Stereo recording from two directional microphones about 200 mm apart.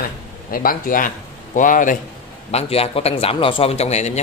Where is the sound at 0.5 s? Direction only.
45° left (ahead or behind).